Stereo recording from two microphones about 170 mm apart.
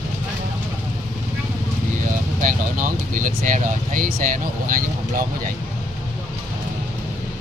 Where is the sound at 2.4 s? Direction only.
50° right (ahead or behind).